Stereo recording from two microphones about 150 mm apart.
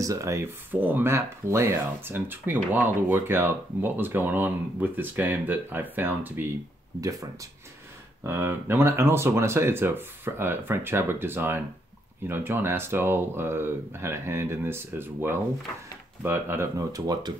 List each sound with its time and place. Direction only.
0.0 s speech: 20° right (ahead or behind)